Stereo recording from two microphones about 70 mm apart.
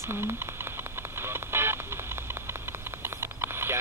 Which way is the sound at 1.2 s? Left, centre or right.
Right.